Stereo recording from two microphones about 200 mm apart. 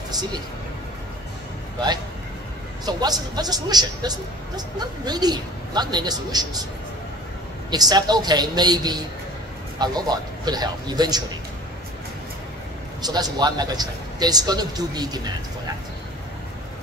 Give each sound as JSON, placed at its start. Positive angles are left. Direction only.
{"t": 0.1, "sound": "speech", "side_deg": -20}
{"t": 2.8, "sound": "a man's voice", "side_deg": -20}
{"t": 7.7, "sound": "a man's voice", "side_deg": -20}
{"t": 13.0, "sound": "a man's voice", "side_deg": -20}